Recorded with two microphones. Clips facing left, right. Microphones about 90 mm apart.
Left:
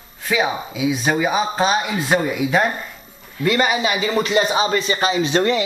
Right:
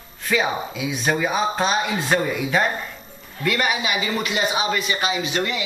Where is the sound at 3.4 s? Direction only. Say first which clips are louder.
Left 4 dB; 25° left (ahead or behind).